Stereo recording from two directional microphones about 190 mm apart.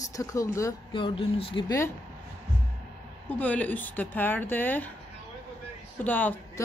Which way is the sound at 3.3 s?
10° left (ahead or behind).